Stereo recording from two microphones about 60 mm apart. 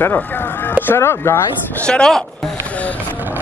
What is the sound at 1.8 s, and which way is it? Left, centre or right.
Speech, centre.